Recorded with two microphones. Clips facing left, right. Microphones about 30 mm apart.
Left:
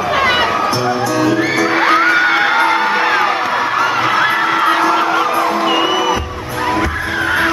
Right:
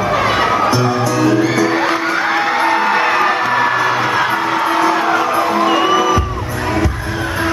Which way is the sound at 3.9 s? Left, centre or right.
Centre.